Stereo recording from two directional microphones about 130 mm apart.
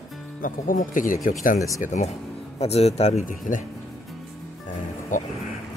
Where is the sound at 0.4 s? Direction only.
90° left.